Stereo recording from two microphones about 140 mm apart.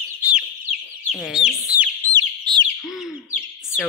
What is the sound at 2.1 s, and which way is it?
Bird, 30° right (ahead or behind).